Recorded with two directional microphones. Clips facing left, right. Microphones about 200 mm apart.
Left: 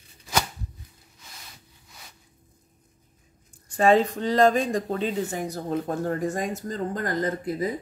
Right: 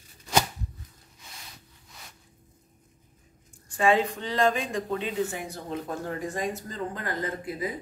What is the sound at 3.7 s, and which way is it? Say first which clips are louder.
Speech: left 4 dB; 40° left (ahead or behind).